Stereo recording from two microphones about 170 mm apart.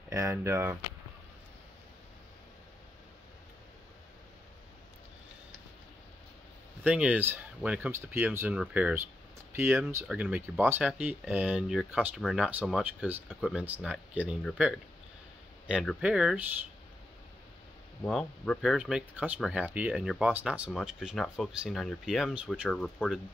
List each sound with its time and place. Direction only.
0.1 s speech: 15° right (ahead or behind)
6.8 s speech: 10° right (ahead or behind)
16.0 s speech: 5° right (ahead or behind)
18.0 s speech: 5° left (ahead or behind)